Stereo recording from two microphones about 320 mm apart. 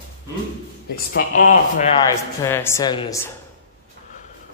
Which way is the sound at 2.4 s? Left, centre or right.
Centre.